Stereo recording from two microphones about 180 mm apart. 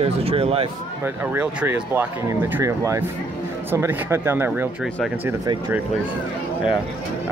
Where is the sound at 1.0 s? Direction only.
10° right (ahead or behind).